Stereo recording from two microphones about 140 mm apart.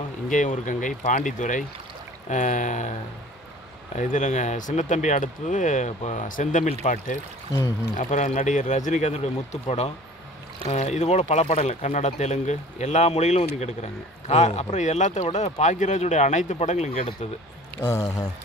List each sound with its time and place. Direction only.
0.3 s speech: 65° left (ahead or behind)
3.9 s speech: 60° left (ahead or behind)
17.7 s speech: 20° left (ahead or behind)